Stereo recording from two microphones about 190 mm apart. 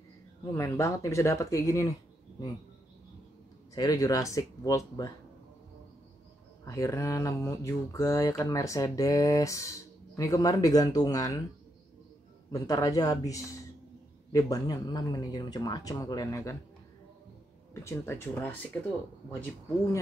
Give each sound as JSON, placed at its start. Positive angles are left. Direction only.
{"t": 0.5, "sound": "mantra", "side_deg": 15}
{"t": 3.7, "sound": "speech", "side_deg": 20}
{"t": 6.6, "sound": "mantra", "side_deg": 15}
{"t": 10.1, "sound": "speech", "side_deg": 20}
{"t": 12.4, "sound": "speech", "side_deg": 20}
{"t": 17.8, "sound": "mantra", "side_deg": 10}